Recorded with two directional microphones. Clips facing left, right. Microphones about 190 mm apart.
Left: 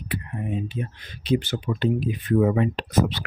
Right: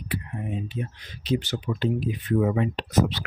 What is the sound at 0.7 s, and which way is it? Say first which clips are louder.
Speech: left 1 dB; 55° left (ahead or behind).